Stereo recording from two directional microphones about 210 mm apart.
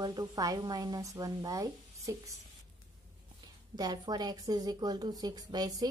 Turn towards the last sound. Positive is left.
turn(degrees=-20)  # may be behind; listen again after turning